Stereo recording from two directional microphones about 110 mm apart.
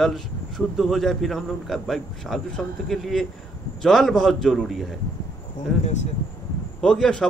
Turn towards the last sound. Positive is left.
turn(degrees=5)  # may be behind; listen again after turning